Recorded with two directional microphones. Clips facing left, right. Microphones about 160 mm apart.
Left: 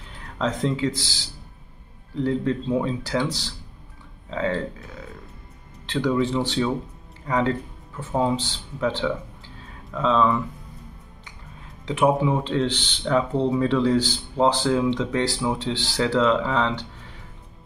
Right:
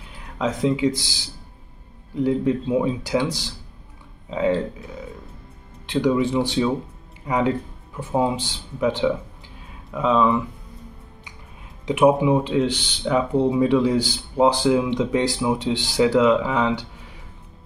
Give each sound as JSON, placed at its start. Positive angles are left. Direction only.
{"t": 0.4, "sound": "speech", "side_deg": -10}
{"t": 5.9, "sound": "speech", "side_deg": -15}
{"t": 11.8, "sound": "speech", "side_deg": -15}